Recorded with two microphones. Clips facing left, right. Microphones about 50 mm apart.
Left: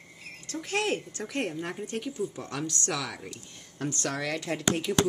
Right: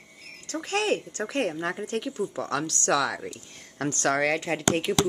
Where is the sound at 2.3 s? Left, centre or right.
Right.